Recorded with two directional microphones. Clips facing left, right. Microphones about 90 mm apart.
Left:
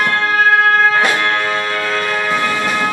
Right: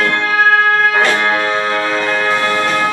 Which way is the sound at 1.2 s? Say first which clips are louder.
Right 2 dB; 15° right (ahead or behind).